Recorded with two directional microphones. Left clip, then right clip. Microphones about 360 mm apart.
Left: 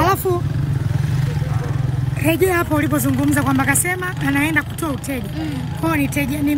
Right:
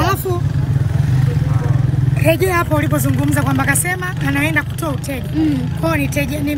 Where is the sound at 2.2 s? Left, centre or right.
Centre.